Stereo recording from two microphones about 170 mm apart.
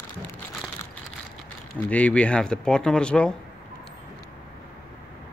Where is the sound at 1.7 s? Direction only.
10° left (ahead or behind).